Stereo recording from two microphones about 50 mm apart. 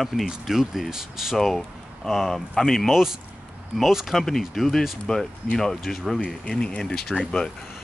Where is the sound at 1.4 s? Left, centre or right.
Centre.